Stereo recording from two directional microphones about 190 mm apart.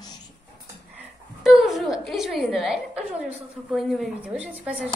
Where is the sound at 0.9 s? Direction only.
5° right (ahead or behind).